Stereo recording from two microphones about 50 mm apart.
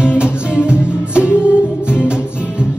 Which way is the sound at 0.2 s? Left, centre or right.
Centre.